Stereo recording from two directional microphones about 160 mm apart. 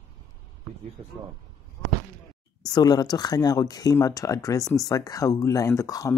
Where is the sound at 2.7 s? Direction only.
25° left (ahead or behind).